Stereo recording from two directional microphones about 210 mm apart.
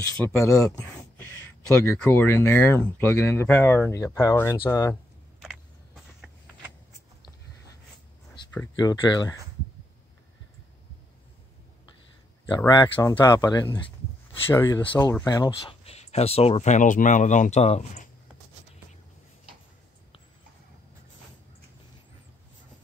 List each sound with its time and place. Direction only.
0.2 s speech: 15° left (ahead or behind)
6.2 s vehicle: centre (ahead or behind)
8.7 s speech: 20° left (ahead or behind)
12.4 s speech: 20° left (ahead or behind)